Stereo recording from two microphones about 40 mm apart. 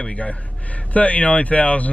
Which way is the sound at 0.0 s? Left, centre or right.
Left.